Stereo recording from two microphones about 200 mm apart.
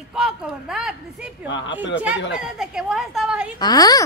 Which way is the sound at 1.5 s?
65° left (ahead or behind).